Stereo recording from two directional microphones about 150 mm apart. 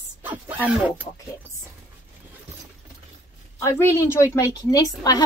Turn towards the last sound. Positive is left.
turn(degrees=25)  # may be behind; listen again after turning